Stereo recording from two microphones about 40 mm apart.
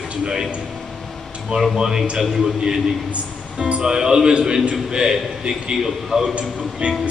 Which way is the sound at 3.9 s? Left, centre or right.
Centre.